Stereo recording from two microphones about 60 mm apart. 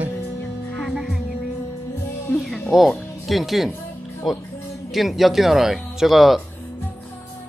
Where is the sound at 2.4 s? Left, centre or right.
Centre.